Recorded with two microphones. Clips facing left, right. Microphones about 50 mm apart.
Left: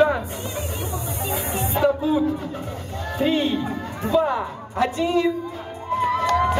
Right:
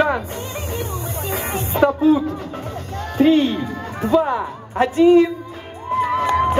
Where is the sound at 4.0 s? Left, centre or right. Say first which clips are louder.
Right 3 dB; right.